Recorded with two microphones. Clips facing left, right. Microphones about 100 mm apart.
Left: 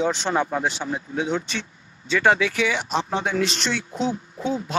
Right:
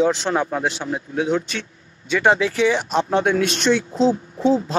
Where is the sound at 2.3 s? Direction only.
35° right (ahead or behind); by 3.5 s 55° right (ahead or behind).